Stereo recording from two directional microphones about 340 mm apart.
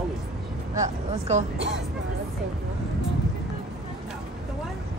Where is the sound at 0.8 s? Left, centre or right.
Right.